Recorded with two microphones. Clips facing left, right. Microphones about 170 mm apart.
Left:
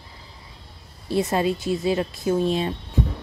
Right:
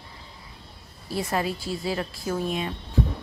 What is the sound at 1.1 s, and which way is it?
Speech, 25° left (ahead or behind).